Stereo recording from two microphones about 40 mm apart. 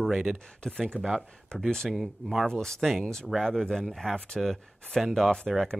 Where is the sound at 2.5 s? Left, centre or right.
Centre.